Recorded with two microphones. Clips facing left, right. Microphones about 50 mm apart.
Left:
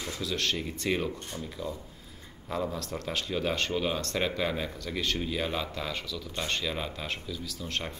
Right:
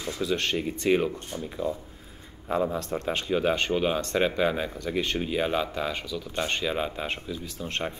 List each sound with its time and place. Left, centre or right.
0.2 s speech: right